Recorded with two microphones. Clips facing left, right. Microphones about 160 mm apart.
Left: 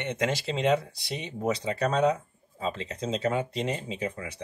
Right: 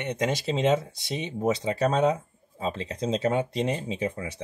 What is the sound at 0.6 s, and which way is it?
Speech, 25° right (ahead or behind).